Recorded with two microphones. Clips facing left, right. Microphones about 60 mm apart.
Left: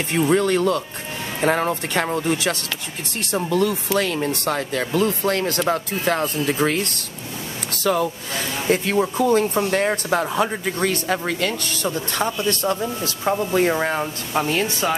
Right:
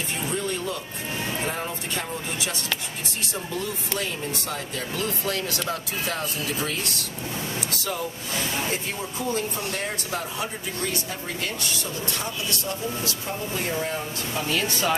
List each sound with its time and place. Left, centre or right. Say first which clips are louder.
0.1 s speech: left 13 dB; left
4.9 s speech: left 8 dB; left
9.0 s speech: left 10 dB; left
11.8 s speech: left 8 dB; left
14.4 s speech: left 4 dB; left